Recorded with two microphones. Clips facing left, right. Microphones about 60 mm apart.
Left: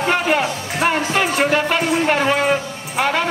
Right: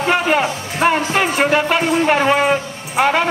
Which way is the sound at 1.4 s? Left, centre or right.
Right.